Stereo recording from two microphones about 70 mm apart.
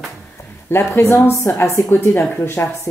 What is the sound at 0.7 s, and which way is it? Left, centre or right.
Speech, left.